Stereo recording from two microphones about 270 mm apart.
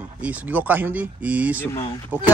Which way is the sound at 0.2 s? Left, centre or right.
Centre.